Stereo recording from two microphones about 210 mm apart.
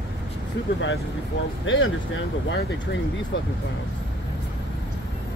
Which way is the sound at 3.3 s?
60° left (ahead or behind).